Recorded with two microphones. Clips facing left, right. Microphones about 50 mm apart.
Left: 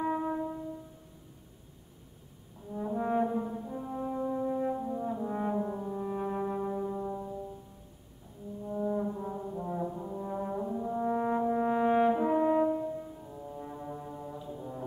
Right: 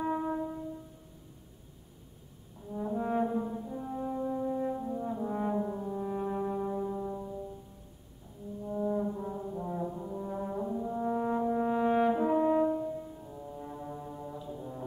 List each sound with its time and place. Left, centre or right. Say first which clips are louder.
0.0 s music: left 1 dB; centre
2.7 s brass instrument: left 1 dB; centre
8.6 s brass instrument: even; centre